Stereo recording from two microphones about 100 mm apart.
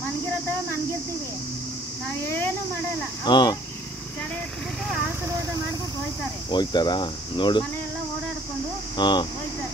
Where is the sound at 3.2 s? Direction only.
45° left (ahead or behind).